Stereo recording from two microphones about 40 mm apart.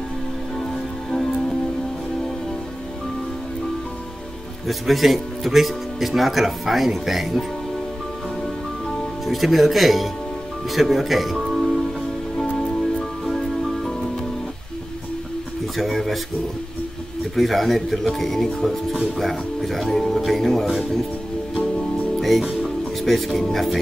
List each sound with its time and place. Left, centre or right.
1.1 s music: centre
4.6 s speech: centre
8.8 s speech: centre
12.5 s music: centre
15.7 s speech: centre
17.4 s speech: centre
22.2 s music: centre
23.0 s speech: centre